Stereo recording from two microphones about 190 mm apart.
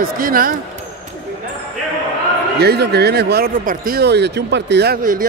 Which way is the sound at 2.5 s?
55° right (ahead or behind).